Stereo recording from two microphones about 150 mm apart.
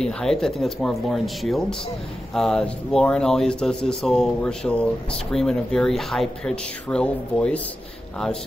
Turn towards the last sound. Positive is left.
turn(degrees=5)  # may be behind; listen again after turning